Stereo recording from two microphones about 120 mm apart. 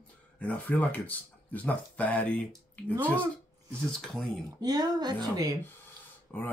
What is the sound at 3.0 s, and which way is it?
Speech, 15° right (ahead or behind).